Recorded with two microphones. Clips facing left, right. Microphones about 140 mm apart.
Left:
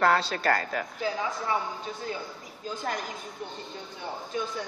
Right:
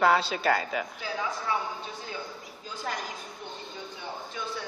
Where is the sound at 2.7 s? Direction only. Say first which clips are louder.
Left 3 dB; 50° left (ahead or behind).